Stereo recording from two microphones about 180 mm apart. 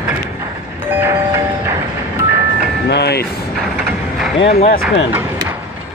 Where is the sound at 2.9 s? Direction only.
65° left (ahead or behind).